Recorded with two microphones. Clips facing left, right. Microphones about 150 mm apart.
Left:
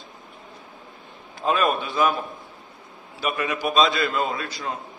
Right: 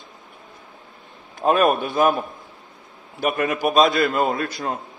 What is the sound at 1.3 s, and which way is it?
Speech, 50° right (ahead or behind).